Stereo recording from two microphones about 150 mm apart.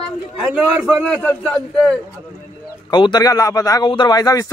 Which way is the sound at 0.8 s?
10° left (ahead or behind).